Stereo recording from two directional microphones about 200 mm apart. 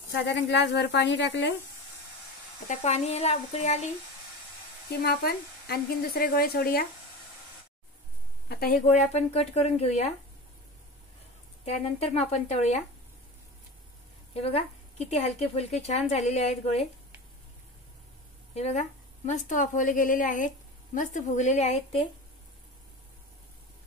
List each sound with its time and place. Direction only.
0.1 s speech: 60° left (ahead or behind)
2.7 s speech: 35° left (ahead or behind)
5.0 s speech: 50° left (ahead or behind)
8.5 s speech: 50° left (ahead or behind)
8.8 s speech: 35° left (ahead or behind)
11.6 s speech: 30° left (ahead or behind)
14.3 s speech: 30° left (ahead or behind)
18.5 s speech: 35° left (ahead or behind)